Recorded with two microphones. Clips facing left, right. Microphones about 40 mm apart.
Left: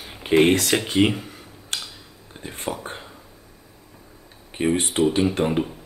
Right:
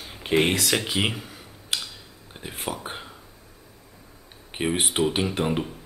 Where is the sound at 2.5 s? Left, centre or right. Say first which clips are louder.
Left 2 dB; centre.